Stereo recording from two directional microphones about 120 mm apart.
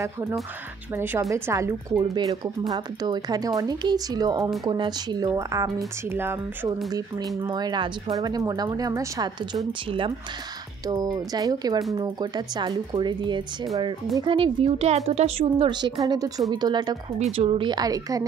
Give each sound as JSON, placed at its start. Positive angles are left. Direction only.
{"t": 0.0, "sound": "a woman's voice", "side_deg": -20}
{"t": 2.0, "sound": "a woman's voice", "side_deg": -40}
{"t": 6.9, "sound": "speech", "side_deg": -35}
{"t": 9.7, "sound": "a woman's voice", "side_deg": -45}
{"t": 10.9, "sound": "a woman's voice", "side_deg": -35}
{"t": 15.7, "sound": "speech", "side_deg": -35}
{"t": 17.2, "sound": "a woman's voice", "side_deg": -50}
{"t": 17.6, "sound": "speech", "side_deg": -35}